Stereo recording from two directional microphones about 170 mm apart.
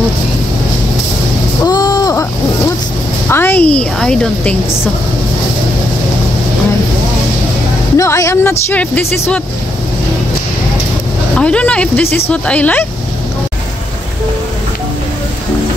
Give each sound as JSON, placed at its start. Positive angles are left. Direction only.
{"t": 1.6, "sound": "a sound", "side_deg": 20}
{"t": 3.3, "sound": "a woman's voice", "side_deg": 15}
{"t": 8.0, "sound": "speech", "side_deg": 15}
{"t": 11.3, "sound": "speech", "side_deg": 5}